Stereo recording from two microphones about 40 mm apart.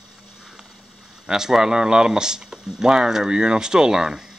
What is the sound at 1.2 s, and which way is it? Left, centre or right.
Speech, centre.